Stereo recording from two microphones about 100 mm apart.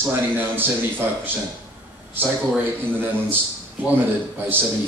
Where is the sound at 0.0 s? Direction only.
20° right (ahead or behind).